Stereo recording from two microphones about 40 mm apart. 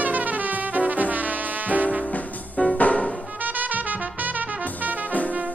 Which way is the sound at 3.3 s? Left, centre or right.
Right.